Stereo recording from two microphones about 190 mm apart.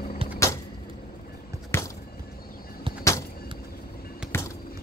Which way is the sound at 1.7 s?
10° left (ahead or behind).